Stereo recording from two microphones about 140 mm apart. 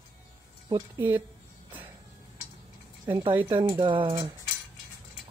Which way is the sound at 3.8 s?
35° right (ahead or behind).